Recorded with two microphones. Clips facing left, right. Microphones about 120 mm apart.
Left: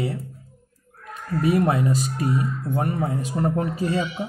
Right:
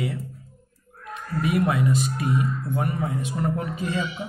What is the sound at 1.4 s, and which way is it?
Speech, 35° left (ahead or behind).